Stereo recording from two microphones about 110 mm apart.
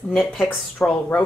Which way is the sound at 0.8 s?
15° left (ahead or behind).